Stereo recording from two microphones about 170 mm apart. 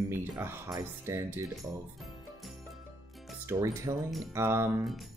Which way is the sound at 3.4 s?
20° right (ahead or behind).